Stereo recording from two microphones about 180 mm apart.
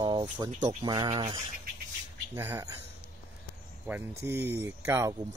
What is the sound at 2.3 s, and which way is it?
Speech, 15° right (ahead or behind).